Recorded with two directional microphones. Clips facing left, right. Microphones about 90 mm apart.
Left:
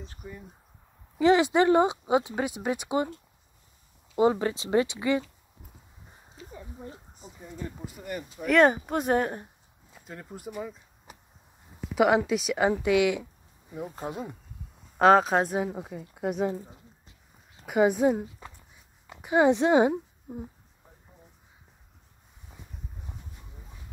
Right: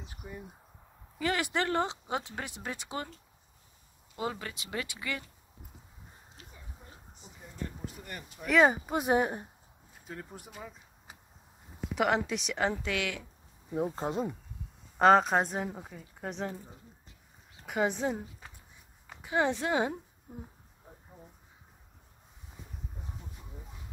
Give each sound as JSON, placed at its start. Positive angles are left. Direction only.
{"t": 0.0, "sound": "speech", "side_deg": -15}
{"t": 1.1, "sound": "speech", "side_deg": 20}
{"t": 4.2, "sound": "speech", "side_deg": 30}
{"t": 6.5, "sound": "a sound", "side_deg": 40}
{"t": 7.8, "sound": "speech", "side_deg": 5}
{"t": 10.0, "sound": "speech", "side_deg": 0}
{"t": 11.9, "sound": "speech", "side_deg": 5}
{"t": 13.7, "sound": "speech", "side_deg": -30}
{"t": 15.0, "sound": "speech", "side_deg": 0}
{"t": 17.6, "sound": "speech", "side_deg": 10}
{"t": 19.2, "sound": "a woman's voice", "side_deg": 20}